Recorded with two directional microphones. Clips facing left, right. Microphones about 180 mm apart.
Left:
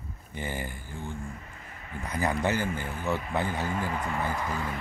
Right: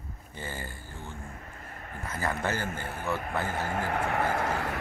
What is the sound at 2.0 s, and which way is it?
Speech, 15° left (ahead or behind).